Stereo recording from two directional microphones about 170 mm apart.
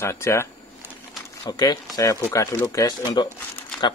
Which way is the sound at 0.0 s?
15° left (ahead or behind).